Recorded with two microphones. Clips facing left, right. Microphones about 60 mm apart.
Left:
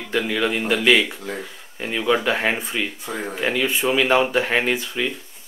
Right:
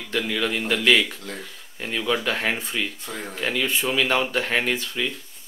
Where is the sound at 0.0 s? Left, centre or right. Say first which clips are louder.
Left 3 dB; centre.